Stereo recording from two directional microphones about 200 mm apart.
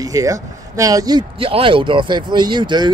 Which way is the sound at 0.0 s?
15° right (ahead or behind).